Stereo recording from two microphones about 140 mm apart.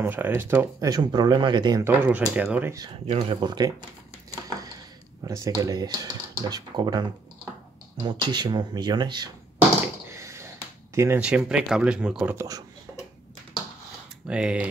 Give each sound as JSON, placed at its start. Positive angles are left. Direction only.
{"t": 0.0, "sound": "speech", "side_deg": -15}
{"t": 1.9, "sound": "speech", "side_deg": -10}
{"t": 3.1, "sound": "speech", "side_deg": -40}
{"t": 5.2, "sound": "speech", "side_deg": -25}
{"t": 10.0, "sound": "a sound", "side_deg": -20}
{"t": 11.0, "sound": "speech", "side_deg": -15}
{"t": 11.2, "sound": "speech", "side_deg": -5}
{"t": 12.4, "sound": "speech", "side_deg": -25}
{"t": 14.2, "sound": "speech", "side_deg": -5}